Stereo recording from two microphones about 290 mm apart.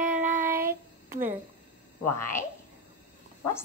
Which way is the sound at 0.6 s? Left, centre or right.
Centre.